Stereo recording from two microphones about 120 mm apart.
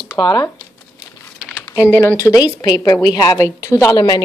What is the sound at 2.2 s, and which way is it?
A woman's voice, 30° left (ahead or behind).